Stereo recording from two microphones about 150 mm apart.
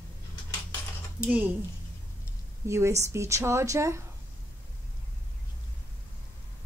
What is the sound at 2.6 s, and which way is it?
Speech, 20° right (ahead or behind).